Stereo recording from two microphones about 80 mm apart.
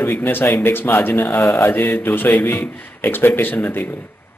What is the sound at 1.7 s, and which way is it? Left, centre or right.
A man's voice, left.